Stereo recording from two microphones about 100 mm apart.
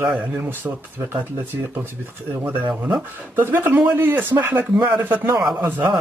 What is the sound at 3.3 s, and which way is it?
Speech, 20° right (ahead or behind).